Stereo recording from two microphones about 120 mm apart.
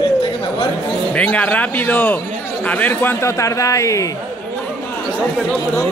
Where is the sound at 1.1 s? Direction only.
10° left (ahead or behind); by 4.1 s 25° left (ahead or behind).